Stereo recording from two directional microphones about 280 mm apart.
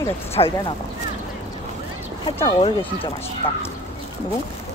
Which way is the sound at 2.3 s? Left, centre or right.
Centre.